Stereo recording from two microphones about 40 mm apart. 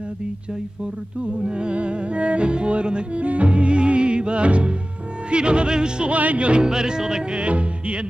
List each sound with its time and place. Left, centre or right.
1.4 s music: right
6.1 s music: right; by 7.2 s centre
7.3 s music: right